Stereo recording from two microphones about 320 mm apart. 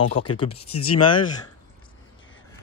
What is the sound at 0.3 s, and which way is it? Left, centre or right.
Speech, centre.